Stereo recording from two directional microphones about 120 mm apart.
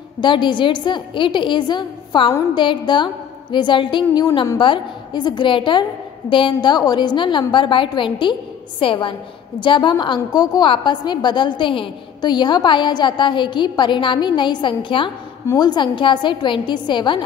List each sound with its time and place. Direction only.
0.2 s a woman's voice: 40° left (ahead or behind)
4.6 s a woman's voice: 40° left (ahead or behind)
15.4 s a woman's voice: 35° left (ahead or behind)